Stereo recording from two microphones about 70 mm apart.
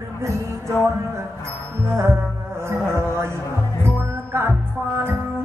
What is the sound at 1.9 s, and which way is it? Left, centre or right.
Music, right.